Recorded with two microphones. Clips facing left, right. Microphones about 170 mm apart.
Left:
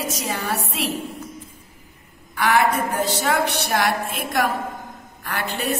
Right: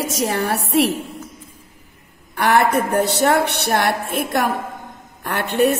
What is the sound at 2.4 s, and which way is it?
A woman's voice, 60° right (ahead or behind).